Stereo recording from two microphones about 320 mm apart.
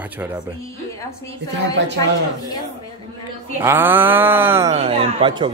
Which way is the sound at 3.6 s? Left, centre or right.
Centre.